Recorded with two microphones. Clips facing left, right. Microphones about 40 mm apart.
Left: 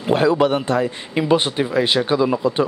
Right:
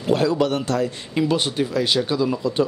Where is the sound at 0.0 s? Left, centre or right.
Left.